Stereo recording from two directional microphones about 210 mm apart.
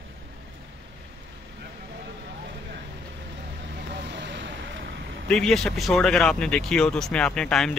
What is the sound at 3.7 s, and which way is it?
Vehicle, 55° right (ahead or behind).